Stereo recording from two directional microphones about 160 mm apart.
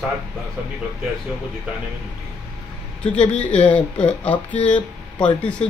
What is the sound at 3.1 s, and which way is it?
A man's voice, 5° left (ahead or behind).